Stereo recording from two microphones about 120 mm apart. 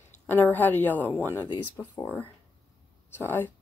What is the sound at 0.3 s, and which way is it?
Speech, 15° left (ahead or behind).